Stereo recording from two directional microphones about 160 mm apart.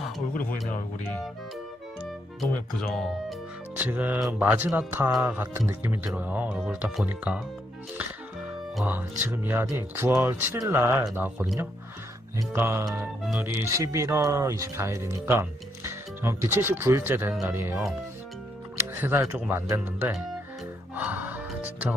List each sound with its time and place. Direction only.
2.4 s speech: 5° left (ahead or behind)
3.7 s speech: 10° right (ahead or behind)
8.7 s speech: 10° right (ahead or behind)
12.5 s speech: 15° right (ahead or behind)
13.2 s speech: 5° right (ahead or behind)
13.7 s speech: 20° right (ahead or behind)
20.9 s music: 10° right (ahead or behind)